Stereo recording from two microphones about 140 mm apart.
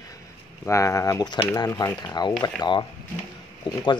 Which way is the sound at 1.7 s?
15° left (ahead or behind).